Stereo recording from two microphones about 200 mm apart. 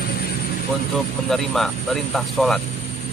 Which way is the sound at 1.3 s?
Centre (ahead or behind).